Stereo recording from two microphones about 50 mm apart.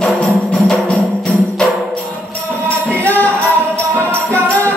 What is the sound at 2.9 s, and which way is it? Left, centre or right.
Music, left.